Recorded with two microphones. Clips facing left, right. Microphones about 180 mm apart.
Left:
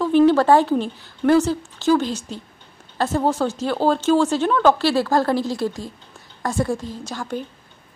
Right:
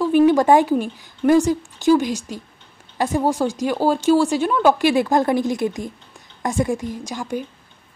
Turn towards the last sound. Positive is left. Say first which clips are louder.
# right 2 dB
turn(degrees=-10)  # may be behind; listen again after turning